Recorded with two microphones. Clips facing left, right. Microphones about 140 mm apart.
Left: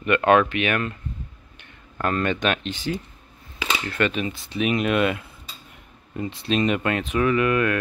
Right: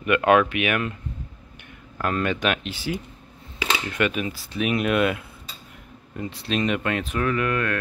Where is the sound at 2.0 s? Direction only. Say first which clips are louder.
Left 1 dB; 5° right (ahead or behind).